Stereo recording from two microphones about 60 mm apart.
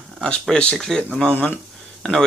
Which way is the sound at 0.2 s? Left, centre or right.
Centre.